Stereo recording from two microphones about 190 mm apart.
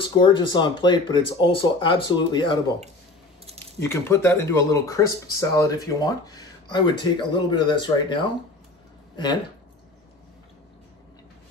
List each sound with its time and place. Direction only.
0.0 s speech: 25° left (ahead or behind)
3.8 s speech: 15° left (ahead or behind)